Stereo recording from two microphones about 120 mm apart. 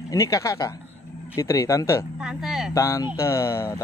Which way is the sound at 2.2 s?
5° right (ahead or behind).